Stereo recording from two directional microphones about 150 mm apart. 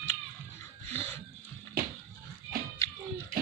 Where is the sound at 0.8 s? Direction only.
15° left (ahead or behind).